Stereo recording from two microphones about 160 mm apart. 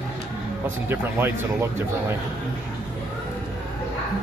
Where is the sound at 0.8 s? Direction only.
15° right (ahead or behind).